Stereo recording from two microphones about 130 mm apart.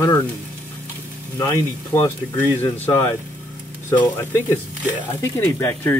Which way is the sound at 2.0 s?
15° left (ahead or behind).